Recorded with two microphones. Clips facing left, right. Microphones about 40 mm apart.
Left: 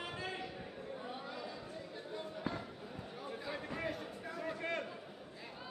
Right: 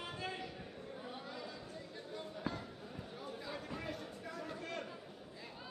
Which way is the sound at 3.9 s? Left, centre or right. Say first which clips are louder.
Left 2 dB; centre.